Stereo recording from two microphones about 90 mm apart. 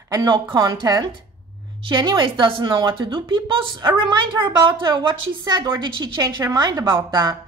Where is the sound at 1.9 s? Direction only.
60° right (ahead or behind).